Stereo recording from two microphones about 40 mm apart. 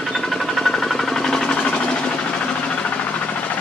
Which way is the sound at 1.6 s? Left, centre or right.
Left.